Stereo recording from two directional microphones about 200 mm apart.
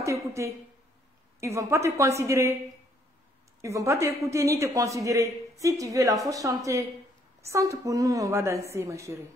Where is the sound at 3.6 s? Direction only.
15° right (ahead or behind).